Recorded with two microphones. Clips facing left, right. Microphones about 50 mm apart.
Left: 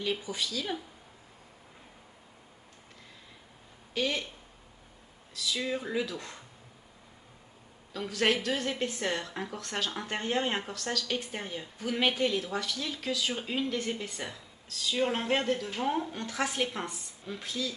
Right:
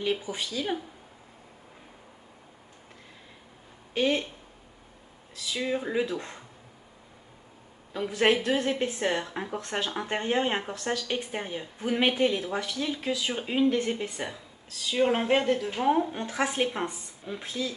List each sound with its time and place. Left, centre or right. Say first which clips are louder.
0.0 s a woman's voice: right 3 dB; right
3.9 s speech: right 5 dB; right
5.3 s a woman's voice: right 3 dB; right
7.9 s a woman's voice: right 4 dB; right